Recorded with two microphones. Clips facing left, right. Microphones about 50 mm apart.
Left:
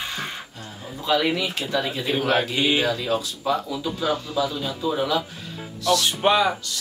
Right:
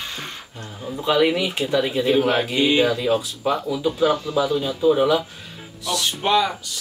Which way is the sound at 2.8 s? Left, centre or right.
Centre.